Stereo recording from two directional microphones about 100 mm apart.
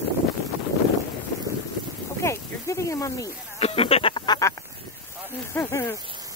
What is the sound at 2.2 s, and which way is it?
Snake, 30° left (ahead or behind).